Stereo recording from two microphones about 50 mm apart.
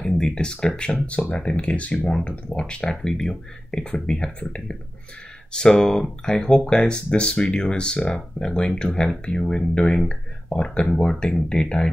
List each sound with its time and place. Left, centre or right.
0.0 s speech: centre
5.5 s speech: centre